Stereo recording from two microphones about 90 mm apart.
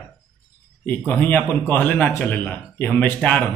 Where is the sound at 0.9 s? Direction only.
20° left (ahead or behind).